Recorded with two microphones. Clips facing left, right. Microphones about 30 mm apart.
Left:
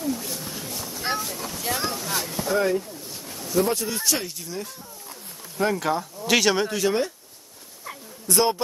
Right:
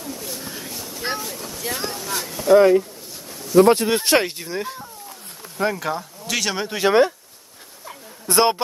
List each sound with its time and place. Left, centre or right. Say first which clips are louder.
0.1 s wild animals: left 2 dB; centre
0.5 s speech: right 1 dB; centre
2.5 s speech: right 11 dB; right
5.6 s speech: even; centre
6.9 s speech: right 8 dB; right
8.3 s speech: right 4 dB; right